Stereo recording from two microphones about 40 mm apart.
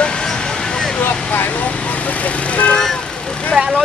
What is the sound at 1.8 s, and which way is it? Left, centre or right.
Speech, left.